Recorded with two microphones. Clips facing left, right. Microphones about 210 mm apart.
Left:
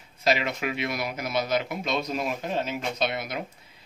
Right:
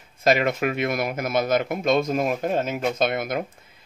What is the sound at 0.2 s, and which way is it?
Speech, 50° right (ahead or behind).